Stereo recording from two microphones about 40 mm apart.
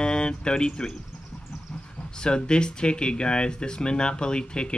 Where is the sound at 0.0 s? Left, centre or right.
Left.